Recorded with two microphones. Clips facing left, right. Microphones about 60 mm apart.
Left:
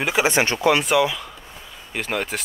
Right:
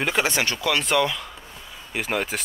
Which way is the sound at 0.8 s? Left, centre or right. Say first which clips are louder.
Left 3 dB; centre.